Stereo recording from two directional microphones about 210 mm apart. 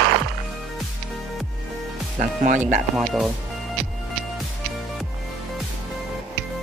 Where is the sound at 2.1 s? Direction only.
35° right (ahead or behind).